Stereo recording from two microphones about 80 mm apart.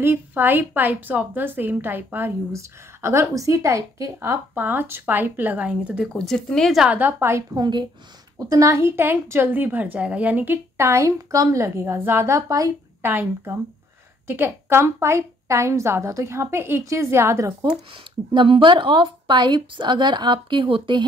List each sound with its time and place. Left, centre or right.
0.0 s a woman's voice: right
4.6 s a woman's voice: right
6.1 s speech: centre
7.0 s a woman's voice: right
7.5 s a woman's voice: right
8.4 s a woman's voice: right
10.9 s a woman's voice: right
13.0 s a woman's voice: right
18.3 s a woman's voice: right